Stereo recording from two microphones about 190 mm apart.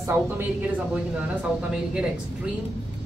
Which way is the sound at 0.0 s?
10° right (ahead or behind).